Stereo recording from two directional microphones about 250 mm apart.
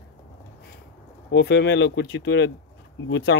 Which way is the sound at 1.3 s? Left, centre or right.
Left.